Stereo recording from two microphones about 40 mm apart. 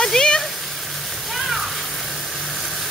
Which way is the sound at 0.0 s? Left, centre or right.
Centre.